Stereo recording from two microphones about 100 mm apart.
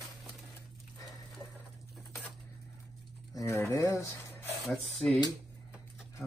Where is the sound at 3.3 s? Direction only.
35° left (ahead or behind).